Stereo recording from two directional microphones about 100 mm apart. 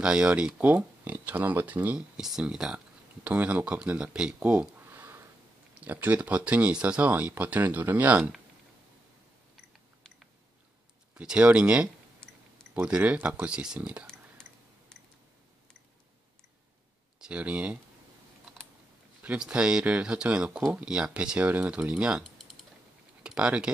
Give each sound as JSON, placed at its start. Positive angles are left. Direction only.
{"t": 0.0, "sound": "speech", "side_deg": -10}
{"t": 2.1, "sound": "speech", "side_deg": -5}
{"t": 4.7, "sound": "a sound", "side_deg": -20}
{"t": 5.8, "sound": "speech", "side_deg": -15}
{"t": 11.1, "sound": "speech", "side_deg": -10}
{"t": 14.0, "sound": "a sound", "side_deg": 5}
{"t": 17.2, "sound": "speech", "side_deg": -15}
{"t": 19.2, "sound": "speech", "side_deg": -10}